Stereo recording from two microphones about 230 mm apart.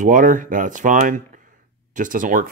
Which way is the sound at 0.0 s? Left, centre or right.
Right.